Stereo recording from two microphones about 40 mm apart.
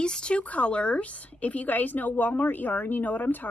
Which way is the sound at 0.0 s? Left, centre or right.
Left.